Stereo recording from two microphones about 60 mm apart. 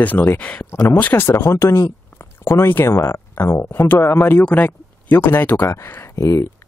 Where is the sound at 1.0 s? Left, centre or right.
Left.